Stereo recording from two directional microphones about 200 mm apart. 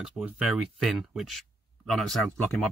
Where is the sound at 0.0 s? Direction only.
Centre (ahead or behind).